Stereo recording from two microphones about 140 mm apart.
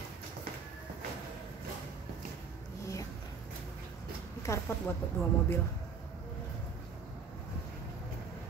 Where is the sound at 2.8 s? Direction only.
20° left (ahead or behind).